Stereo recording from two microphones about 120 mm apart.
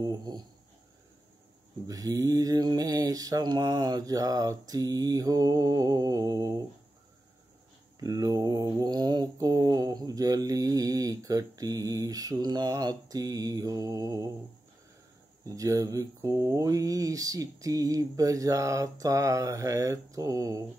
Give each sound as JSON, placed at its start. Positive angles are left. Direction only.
{"t": 0.0, "sound": "mantra", "side_deg": -35}
{"t": 1.9, "sound": "mantra", "side_deg": -30}
{"t": 8.0, "sound": "mantra", "side_deg": -30}
{"t": 15.4, "sound": "speech", "side_deg": -30}